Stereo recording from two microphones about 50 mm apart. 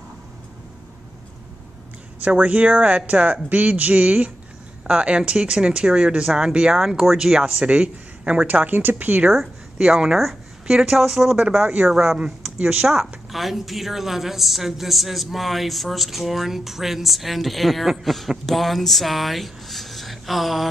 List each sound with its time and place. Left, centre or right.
2.1 s speech: right
4.8 s speech: right
8.6 s speech: right
9.3 s a woman's voice: centre
11.6 s speech: right
11.9 s a woman's voice: centre